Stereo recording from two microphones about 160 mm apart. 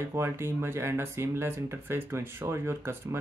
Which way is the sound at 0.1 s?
15° right (ahead or behind).